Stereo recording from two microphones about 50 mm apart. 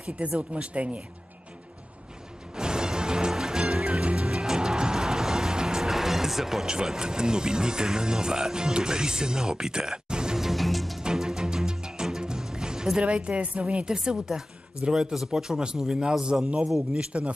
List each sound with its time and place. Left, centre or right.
0.4 s a woman's voice: right
2.5 s music: centre
11.0 s music: centre
13.0 s a woman's voice: right
13.8 s a woman's voice: centre